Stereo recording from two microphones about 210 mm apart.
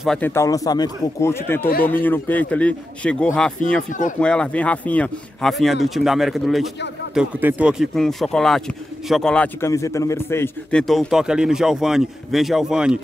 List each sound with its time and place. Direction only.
0.0 s speech: 5° left (ahead or behind)